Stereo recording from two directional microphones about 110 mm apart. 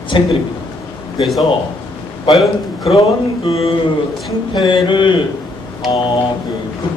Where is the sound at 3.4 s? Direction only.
65° left (ahead or behind).